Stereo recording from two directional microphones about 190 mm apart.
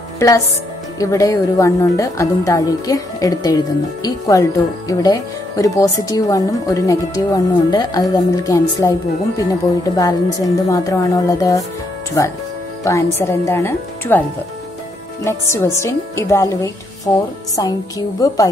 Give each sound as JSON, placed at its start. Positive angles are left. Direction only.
{"t": 0.9, "sound": "a woman's voice", "side_deg": 15}
{"t": 12.8, "sound": "a woman's voice", "side_deg": 15}
{"t": 15.2, "sound": "a woman's voice", "side_deg": 15}